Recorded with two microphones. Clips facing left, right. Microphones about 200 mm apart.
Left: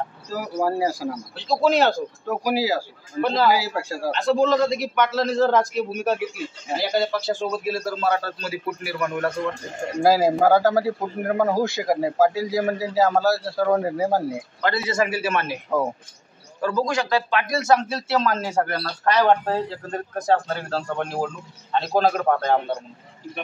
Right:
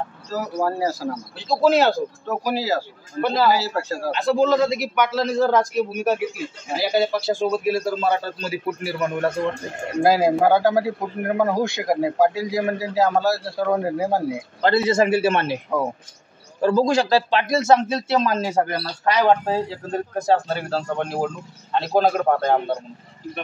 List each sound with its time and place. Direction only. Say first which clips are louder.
0.3 s speech: even; 10° left (ahead or behind)
1.3 s a man's voice: right 2 dB; 5° right (ahead or behind)
2.2 s speech: left 3 dB; 10° left (ahead or behind)
3.2 s a man's voice: right 1 dB; 5° right (ahead or behind)
3.5 s speech: right 1 dB; 10° left (ahead or behind)
4.1 s a man's voice: right 1 dB; 5° right (ahead or behind); by 9.3 s 20° right (ahead or behind)
10.0 s a man's voice: even; centre (ahead or behind)
14.6 s a man's voice: right 5 dB; 30° right (ahead or behind)
15.7 s a man's voice: left 1 dB; centre (ahead or behind)
16.6 s a man's voice: right 5 dB; 30° right (ahead or behind); by 22.5 s 5° right (ahead or behind)